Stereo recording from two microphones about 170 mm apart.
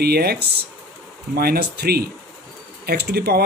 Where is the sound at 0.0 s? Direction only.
65° right (ahead or behind).